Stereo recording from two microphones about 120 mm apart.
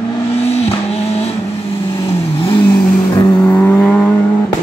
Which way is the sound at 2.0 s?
45° left (ahead or behind).